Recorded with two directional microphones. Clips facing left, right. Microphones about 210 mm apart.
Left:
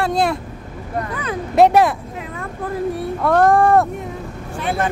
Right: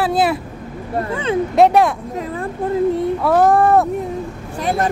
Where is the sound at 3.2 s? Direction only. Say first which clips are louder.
Even; 5° right (ahead or behind).